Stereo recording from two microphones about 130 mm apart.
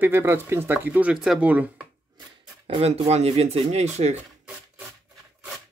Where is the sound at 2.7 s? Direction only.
55° right (ahead or behind).